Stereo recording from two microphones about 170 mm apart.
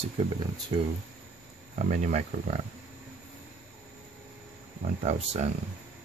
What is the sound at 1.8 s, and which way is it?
Speech, 45° right (ahead or behind).